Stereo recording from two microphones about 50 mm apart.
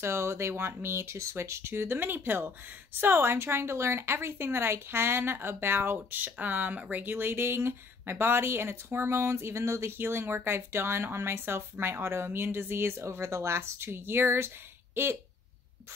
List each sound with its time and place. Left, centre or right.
0.0 s speech: right